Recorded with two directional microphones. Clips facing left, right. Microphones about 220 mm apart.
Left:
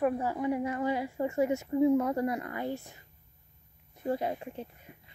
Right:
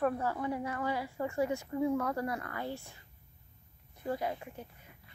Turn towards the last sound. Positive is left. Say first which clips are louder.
# left 6 dB
turn(degrees=25)  # may be behind; listen again after turning